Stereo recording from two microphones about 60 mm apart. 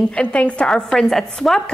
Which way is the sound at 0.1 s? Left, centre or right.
Centre.